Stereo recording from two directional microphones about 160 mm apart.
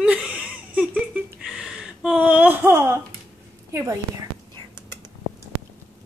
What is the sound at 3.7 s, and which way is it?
Speech, 20° right (ahead or behind).